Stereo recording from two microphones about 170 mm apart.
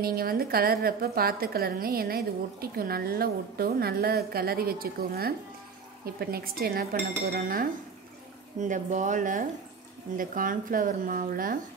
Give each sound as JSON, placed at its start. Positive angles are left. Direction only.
{"t": 0.0, "sound": "a woman's voice", "side_deg": -60}
{"t": 8.5, "sound": "a woman's voice", "side_deg": -45}